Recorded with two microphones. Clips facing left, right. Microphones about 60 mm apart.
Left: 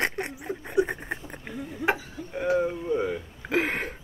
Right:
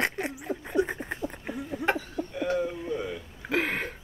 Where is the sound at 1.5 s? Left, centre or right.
Centre.